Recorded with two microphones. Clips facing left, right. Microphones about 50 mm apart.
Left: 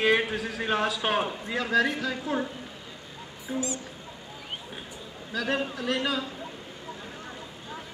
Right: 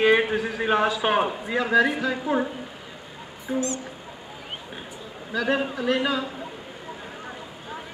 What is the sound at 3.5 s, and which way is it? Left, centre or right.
Speech, centre.